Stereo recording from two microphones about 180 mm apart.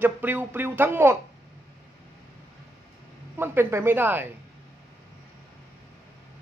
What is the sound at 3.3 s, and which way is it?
Speech, 10° right (ahead or behind).